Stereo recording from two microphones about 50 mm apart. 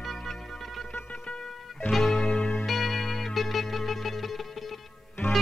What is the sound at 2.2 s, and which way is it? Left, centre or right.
Music, centre.